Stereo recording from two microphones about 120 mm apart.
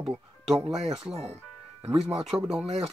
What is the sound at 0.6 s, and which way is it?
Speech, 55° right (ahead or behind).